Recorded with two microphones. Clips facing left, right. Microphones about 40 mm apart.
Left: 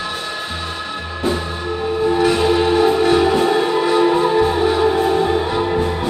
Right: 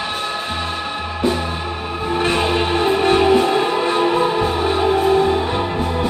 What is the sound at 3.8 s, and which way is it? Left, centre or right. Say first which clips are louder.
Music: left 2 dB; right.